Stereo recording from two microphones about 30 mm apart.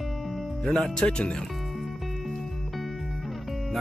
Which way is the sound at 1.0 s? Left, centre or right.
Left.